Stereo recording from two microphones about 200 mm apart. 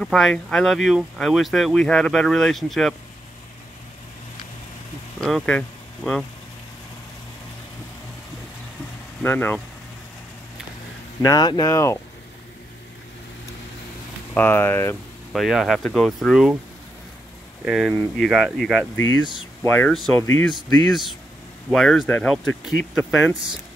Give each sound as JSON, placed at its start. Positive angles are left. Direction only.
{"t": 0.0, "sound": "speech", "side_deg": 0}
{"t": 5.2, "sound": "speech", "side_deg": 5}
{"t": 9.2, "sound": "speech", "side_deg": 10}
{"t": 11.2, "sound": "speech", "side_deg": 20}
{"t": 14.3, "sound": "speech", "side_deg": 10}
{"t": 15.3, "sound": "speech", "side_deg": 0}
{"t": 17.6, "sound": "speech", "side_deg": -5}
{"t": 19.6, "sound": "speech", "side_deg": 10}
{"t": 20.9, "sound": "speech", "side_deg": 0}